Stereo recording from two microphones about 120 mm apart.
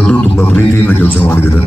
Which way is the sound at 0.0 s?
10° left (ahead or behind).